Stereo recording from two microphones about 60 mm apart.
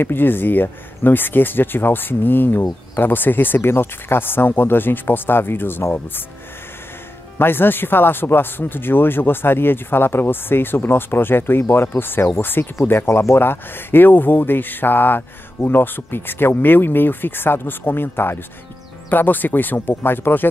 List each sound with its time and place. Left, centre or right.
0.0 s speech: left
7.3 s speech: left
13.0 s speech: left